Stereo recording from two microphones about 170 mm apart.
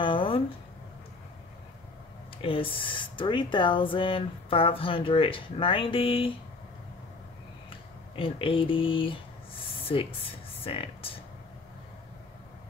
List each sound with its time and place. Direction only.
0.0 s a sound: 30° left (ahead or behind)
2.3 s speech: 30° left (ahead or behind)
8.2 s speech: 30° left (ahead or behind)